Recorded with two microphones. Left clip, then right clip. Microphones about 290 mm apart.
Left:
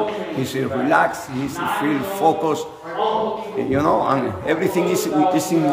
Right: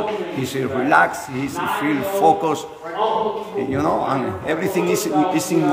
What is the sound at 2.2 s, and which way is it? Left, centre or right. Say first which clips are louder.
Speech: right 2 dB; centre.